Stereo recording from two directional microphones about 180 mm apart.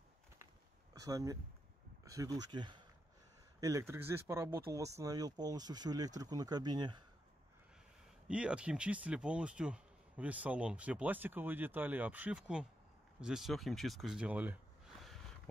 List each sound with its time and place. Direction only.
0.9 s speech: 20° right (ahead or behind)
8.3 s speech: 5° right (ahead or behind)